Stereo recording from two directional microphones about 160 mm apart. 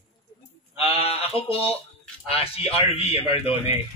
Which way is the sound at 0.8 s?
40° left (ahead or behind).